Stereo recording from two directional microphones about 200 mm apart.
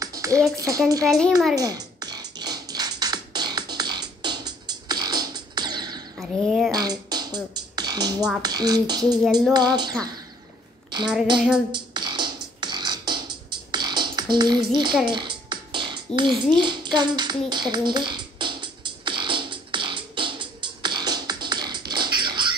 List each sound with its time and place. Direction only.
0.0 s speech: 15° right (ahead or behind)
1.6 s music: 20° right (ahead or behind)
6.1 s speech: 5° right (ahead or behind)
6.7 s speech: 20° right (ahead or behind)
11.3 s a sound: centre (ahead or behind)
11.7 s beatboxing: 20° right (ahead or behind)
14.7 s speech: 20° right (ahead or behind)
15.0 s music: 20° right (ahead or behind)
16.2 s speech: 25° right (ahead or behind)
16.5 s a sound: 25° right (ahead or behind)